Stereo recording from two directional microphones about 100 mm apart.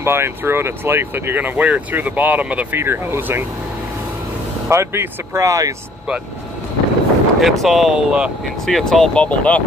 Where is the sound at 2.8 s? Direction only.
25° right (ahead or behind).